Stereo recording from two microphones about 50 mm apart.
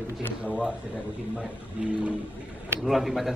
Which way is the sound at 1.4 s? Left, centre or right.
Right.